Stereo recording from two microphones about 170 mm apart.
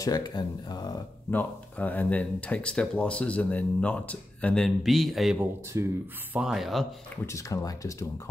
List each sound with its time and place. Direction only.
0.0 s speech: 25° left (ahead or behind)
1.3 s speech: 10° left (ahead or behind)
5.4 s speech: 15° right (ahead or behind)
6.3 s speech: 5° right (ahead or behind)
7.2 s speech: 20° left (ahead or behind)